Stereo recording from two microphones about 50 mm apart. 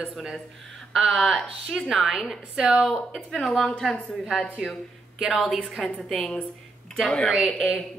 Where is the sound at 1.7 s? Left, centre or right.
Centre.